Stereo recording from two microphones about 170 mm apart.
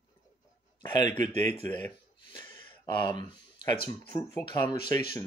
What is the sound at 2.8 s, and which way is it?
Speech, 25° left (ahead or behind).